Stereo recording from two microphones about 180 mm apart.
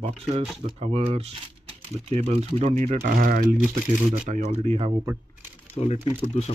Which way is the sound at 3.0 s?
55° right (ahead or behind).